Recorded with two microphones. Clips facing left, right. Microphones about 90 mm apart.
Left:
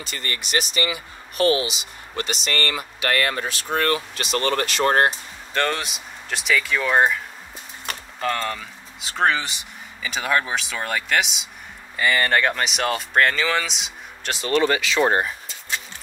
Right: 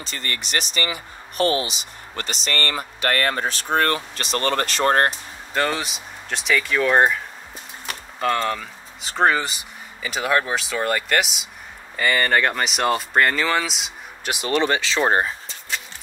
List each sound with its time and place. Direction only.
0.0 s speech: 35° right (ahead or behind)
5.5 s speech: 5° right (ahead or behind)
8.2 s speech: 5° right (ahead or behind)
14.3 s speech: 15° right (ahead or behind)
14.6 s speech: 30° right (ahead or behind)